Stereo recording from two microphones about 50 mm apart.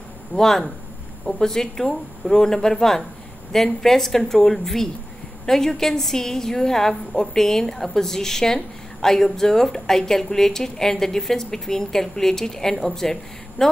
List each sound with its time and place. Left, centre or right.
0.3 s a woman's voice: centre